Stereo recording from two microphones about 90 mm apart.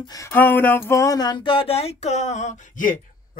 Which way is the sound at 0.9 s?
35° left (ahead or behind).